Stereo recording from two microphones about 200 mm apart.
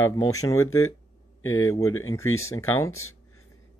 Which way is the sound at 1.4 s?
90° left.